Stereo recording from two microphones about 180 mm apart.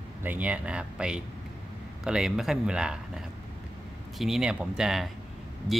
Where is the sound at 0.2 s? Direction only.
10° right (ahead or behind).